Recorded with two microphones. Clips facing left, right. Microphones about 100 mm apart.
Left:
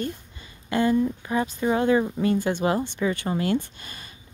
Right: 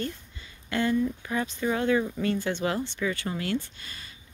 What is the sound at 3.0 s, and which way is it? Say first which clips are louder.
Speech: left 4 dB; 30° left (ahead or behind).